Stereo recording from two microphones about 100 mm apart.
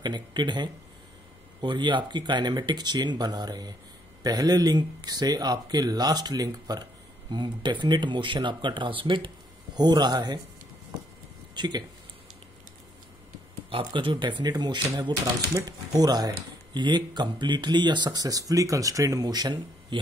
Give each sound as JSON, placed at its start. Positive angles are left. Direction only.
{"t": 0.0, "sound": "speech", "side_deg": -50}
{"t": 11.5, "sound": "speech", "side_deg": -45}
{"t": 13.7, "sound": "speech", "side_deg": -60}